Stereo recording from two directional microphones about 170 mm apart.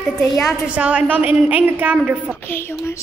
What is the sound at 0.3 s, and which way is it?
Speech, 20° left (ahead or behind).